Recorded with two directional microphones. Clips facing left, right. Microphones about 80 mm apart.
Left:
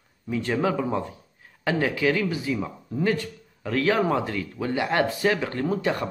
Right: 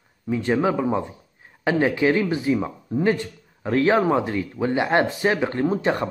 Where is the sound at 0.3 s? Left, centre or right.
Right.